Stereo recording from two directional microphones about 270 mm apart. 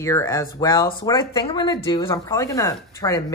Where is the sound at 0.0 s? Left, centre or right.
Centre.